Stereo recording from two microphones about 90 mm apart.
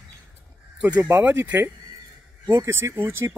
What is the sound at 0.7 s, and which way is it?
Speech, 15° right (ahead or behind).